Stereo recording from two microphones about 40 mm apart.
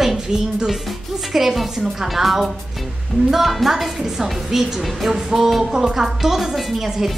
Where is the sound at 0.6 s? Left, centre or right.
Centre.